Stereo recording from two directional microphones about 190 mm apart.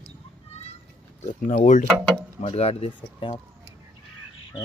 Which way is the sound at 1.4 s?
40° left (ahead or behind).